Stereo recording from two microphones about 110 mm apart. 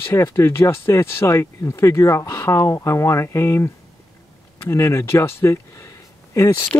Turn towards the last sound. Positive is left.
turn(degrees=25)  # may be behind; listen again after turning